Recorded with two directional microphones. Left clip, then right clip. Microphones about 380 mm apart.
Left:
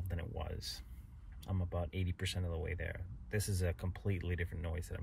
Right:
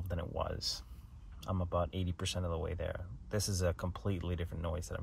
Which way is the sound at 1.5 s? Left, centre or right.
Centre.